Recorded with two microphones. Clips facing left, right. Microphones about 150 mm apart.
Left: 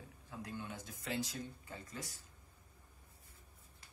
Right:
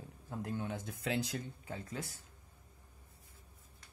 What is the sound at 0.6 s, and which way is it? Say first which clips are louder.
Speech: right 7 dB; 60° right (ahead or behind).